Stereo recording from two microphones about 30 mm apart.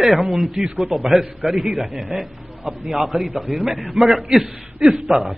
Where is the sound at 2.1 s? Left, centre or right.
Right.